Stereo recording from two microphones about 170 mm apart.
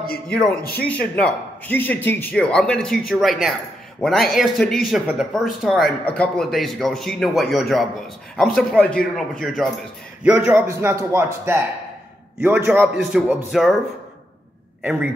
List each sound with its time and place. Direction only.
0.3 s a man's voice: 5° left (ahead or behind)
0.6 s a man's voice: 65° left (ahead or behind)
0.8 s a man's voice: 5° left (ahead or behind)
14.8 s a man's voice: 5° right (ahead or behind)